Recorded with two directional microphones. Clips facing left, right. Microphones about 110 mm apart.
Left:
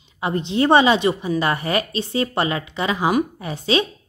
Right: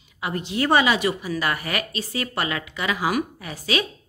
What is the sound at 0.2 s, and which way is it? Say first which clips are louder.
A woman's voice: left 5 dB; 25° left (ahead or behind).